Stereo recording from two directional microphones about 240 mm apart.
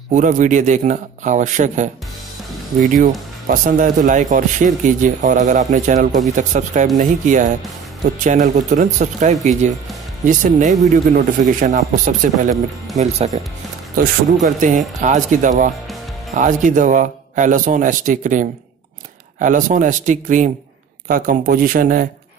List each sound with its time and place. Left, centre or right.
0.1 s speech: right
14.4 s speech: right